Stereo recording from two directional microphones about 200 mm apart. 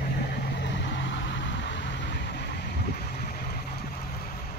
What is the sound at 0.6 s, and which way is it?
Vehicle, 65° left (ahead or behind).